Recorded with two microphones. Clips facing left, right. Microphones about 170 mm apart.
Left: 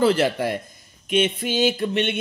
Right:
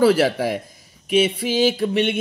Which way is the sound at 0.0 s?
10° right (ahead or behind).